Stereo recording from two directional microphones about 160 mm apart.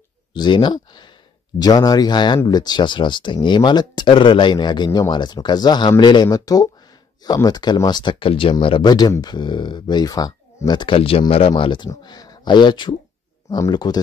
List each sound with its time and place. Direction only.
0.3 s speech: 30° left (ahead or behind)